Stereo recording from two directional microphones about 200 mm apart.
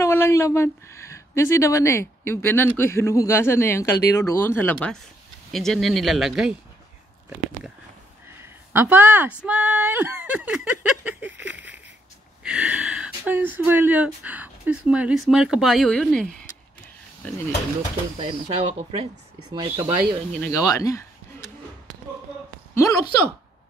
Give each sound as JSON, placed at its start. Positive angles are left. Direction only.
{"t": 0.0, "sound": "speech", "side_deg": 15}
{"t": 8.3, "sound": "speech", "side_deg": -10}
{"t": 18.1, "sound": "speech", "side_deg": -30}
{"t": 19.5, "sound": "speech", "side_deg": -15}
{"t": 20.3, "sound": "speech", "side_deg": 5}
{"t": 20.6, "sound": "a sound", "side_deg": 15}
{"t": 22.8, "sound": "speech", "side_deg": 15}